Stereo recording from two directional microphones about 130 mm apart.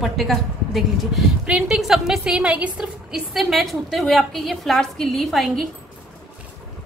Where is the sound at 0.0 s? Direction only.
Centre (ahead or behind).